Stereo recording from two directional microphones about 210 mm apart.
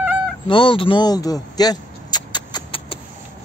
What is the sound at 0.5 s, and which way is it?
Vehicle, 25° left (ahead or behind).